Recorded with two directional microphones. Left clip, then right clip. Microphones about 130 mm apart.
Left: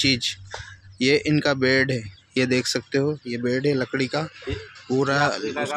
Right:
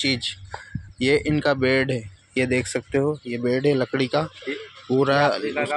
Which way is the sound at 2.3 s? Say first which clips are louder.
Even; 40° left (ahead or behind).